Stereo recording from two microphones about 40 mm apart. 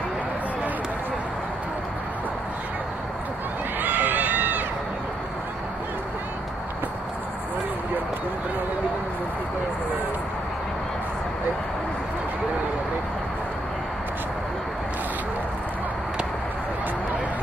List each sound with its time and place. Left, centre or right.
3.8 s run: right